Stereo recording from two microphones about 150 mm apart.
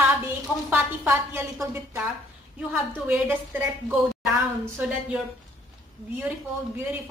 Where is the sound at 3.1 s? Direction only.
10° right (ahead or behind).